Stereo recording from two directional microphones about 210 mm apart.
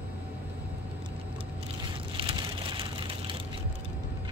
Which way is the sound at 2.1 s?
25° right (ahead or behind).